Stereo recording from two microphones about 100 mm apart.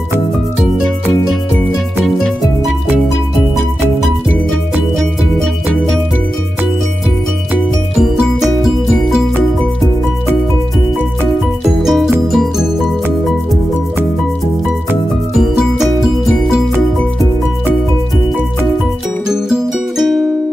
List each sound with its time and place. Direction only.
2.0 s music: centre (ahead or behind)
8.0 s music: 5° right (ahead or behind)
11.6 s music: 5° right (ahead or behind)
15.3 s music: 5° right (ahead or behind)
19.2 s music: 5° right (ahead or behind)